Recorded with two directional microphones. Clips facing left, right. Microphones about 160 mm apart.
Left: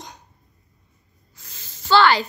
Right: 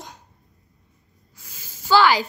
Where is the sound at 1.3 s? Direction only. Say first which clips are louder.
Even; 10° right (ahead or behind).